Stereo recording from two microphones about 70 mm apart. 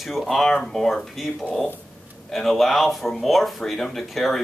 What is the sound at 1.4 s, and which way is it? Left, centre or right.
Speech, centre.